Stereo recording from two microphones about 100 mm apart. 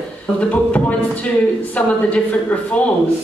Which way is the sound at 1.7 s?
15° left (ahead or behind).